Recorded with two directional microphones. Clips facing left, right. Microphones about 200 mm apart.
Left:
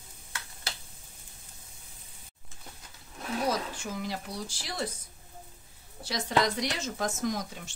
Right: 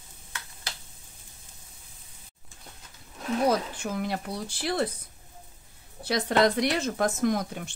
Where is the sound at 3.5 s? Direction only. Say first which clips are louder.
Right 5 dB; 60° right (ahead or behind).